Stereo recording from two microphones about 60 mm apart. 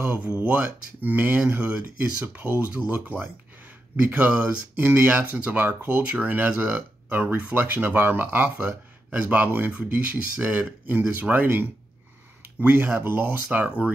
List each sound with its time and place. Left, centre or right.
0.0 s speech: right
4.7 s speech: right
13.7 s speech: centre